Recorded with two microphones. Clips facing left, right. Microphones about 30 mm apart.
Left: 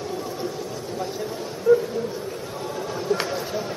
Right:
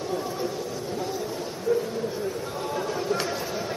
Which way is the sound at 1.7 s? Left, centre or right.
Left.